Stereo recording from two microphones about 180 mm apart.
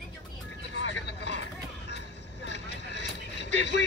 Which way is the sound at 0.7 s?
75° left (ahead or behind).